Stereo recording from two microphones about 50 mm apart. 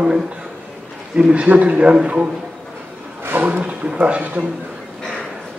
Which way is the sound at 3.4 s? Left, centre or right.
Right.